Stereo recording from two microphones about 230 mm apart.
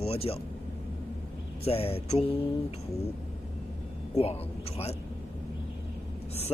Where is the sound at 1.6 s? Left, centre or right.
Left.